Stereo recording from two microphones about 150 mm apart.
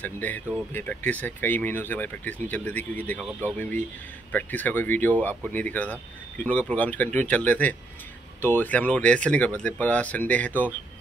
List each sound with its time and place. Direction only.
0.0 s speech: 10° left (ahead or behind)
4.3 s speech: 10° left (ahead or behind)